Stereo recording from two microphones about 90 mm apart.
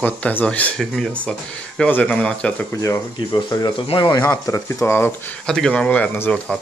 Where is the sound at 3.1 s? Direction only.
50° left (ahead or behind).